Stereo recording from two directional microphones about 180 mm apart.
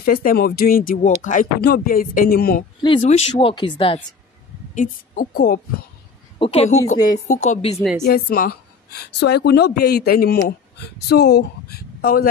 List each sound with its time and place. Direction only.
0.0 s speech: 55° left (ahead or behind)
3.0 s speech: 35° left (ahead or behind)
4.7 s speech: 50° left (ahead or behind)
6.3 s a woman's voice: 30° left (ahead or behind)
7.4 s speech: 40° left (ahead or behind)
8.0 s a woman's voice: 55° left (ahead or behind)